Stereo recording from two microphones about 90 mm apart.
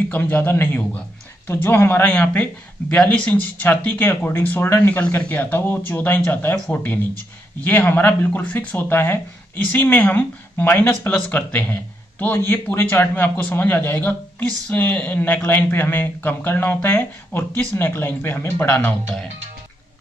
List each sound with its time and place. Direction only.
0.1 s speech: 20° left (ahead or behind)